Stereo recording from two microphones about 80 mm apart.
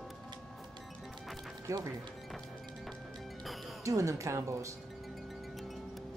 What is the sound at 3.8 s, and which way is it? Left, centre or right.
Speech, right.